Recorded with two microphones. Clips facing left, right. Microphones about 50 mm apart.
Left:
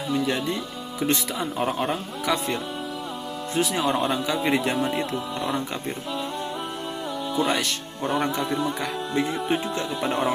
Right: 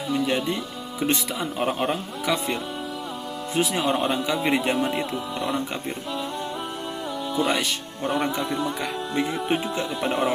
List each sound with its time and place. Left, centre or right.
0.1 s speech: centre
1.6 s a man's voice: right
1.9 s speech: centre
4.3 s speech: centre
7.3 s speech: centre